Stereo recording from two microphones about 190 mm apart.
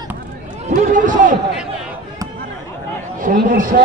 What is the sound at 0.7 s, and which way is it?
Speech, 45° right (ahead or behind).